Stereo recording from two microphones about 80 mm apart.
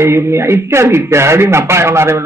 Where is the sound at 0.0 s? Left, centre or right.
Right.